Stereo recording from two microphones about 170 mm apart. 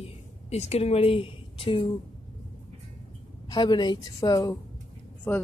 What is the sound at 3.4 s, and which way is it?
A woman's voice, 25° left (ahead or behind).